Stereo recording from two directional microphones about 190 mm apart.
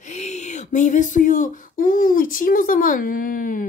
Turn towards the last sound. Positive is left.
turn(degrees=45)  # may be behind; listen again after turning